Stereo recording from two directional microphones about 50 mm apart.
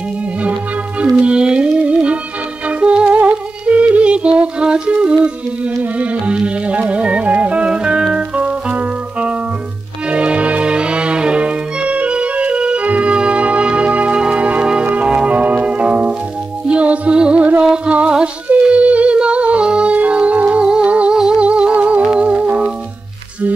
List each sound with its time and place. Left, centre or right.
0.4 s music: right